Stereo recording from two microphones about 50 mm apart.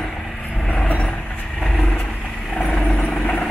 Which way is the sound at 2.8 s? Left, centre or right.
Left.